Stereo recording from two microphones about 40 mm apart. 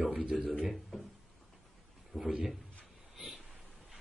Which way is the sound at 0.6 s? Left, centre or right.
Centre.